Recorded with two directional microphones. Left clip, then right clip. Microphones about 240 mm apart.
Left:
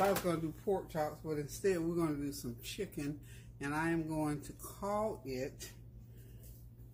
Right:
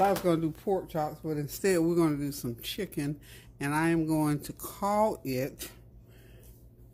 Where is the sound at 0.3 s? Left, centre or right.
Right.